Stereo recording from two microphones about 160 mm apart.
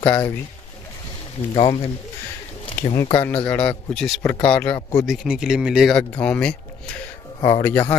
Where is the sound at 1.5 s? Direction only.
35° left (ahead or behind).